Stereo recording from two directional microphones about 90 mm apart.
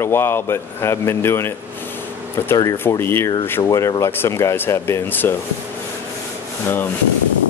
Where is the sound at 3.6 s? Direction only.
40° left (ahead or behind); by 5.3 s 25° left (ahead or behind).